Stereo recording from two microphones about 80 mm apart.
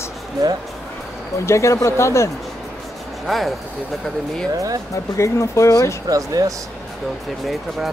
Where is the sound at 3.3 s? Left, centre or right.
Centre.